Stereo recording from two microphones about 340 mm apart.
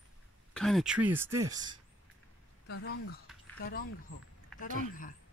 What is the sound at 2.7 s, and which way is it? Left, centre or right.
Speech, left.